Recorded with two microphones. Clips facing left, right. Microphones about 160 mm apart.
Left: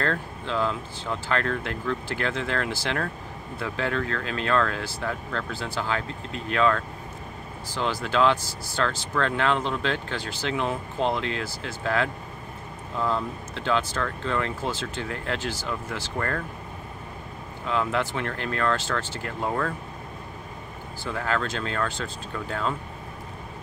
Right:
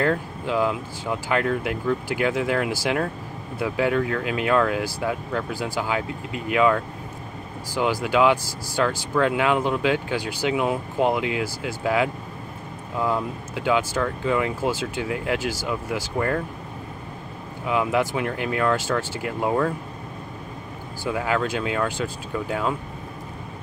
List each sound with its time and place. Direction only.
0.0 s speech: 10° right (ahead or behind)
17.6 s speech: 10° right (ahead or behind)
21.1 s speech: 10° right (ahead or behind)